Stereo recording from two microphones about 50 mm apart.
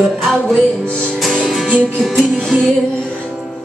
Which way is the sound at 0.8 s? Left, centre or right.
Centre.